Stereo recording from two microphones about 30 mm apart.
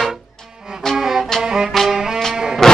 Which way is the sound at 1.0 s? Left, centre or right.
Centre.